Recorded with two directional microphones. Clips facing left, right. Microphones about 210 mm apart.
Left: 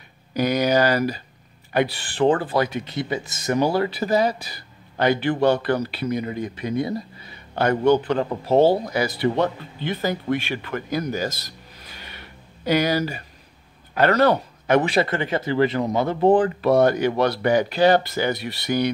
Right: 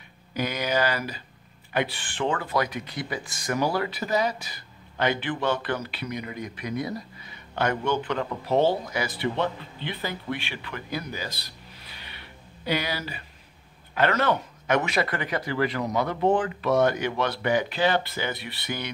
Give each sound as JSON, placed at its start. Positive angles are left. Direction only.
{"t": 0.3, "sound": "speech", "side_deg": 40}